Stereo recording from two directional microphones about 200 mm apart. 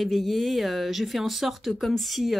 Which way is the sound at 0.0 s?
Centre (ahead or behind).